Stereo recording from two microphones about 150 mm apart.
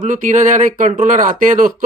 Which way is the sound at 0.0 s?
55° right (ahead or behind).